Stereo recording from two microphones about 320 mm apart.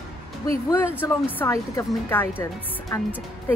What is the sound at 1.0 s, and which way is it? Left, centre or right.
Speech, centre.